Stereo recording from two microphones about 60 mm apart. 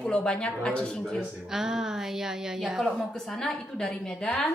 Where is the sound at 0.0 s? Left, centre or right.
Centre.